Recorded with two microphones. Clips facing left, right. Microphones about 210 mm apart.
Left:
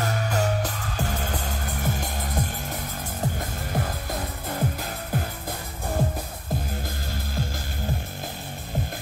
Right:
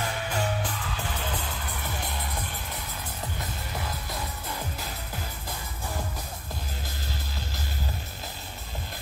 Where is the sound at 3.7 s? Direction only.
50° left (ahead or behind).